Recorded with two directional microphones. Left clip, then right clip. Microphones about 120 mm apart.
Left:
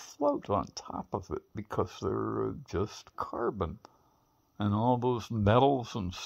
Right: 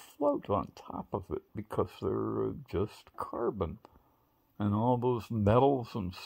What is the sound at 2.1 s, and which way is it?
Speech, 10° left (ahead or behind).